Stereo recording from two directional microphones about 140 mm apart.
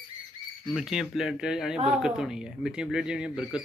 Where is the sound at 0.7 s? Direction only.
Centre (ahead or behind).